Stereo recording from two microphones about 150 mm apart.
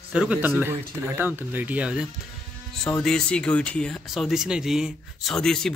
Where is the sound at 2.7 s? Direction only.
5° left (ahead or behind).